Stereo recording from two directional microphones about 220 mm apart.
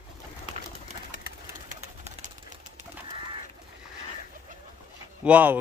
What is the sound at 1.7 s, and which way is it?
Bird, 35° right (ahead or behind).